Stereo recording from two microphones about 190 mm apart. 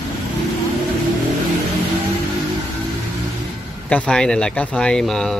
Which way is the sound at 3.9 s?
5° left (ahead or behind).